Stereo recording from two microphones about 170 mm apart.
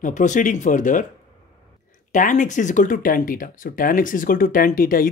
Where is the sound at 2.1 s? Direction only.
50° left (ahead or behind).